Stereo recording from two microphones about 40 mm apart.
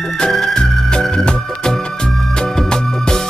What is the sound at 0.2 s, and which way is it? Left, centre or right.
Music, centre.